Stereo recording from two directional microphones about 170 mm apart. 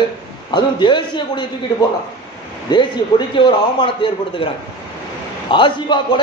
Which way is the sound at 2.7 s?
25° left (ahead or behind).